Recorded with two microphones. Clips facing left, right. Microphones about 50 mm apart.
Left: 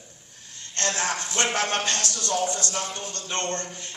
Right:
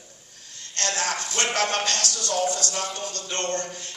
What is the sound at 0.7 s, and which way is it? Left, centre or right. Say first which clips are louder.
A man's voice: even; left.